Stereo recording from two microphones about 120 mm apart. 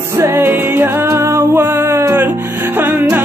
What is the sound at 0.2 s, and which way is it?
Music, 20° right (ahead or behind).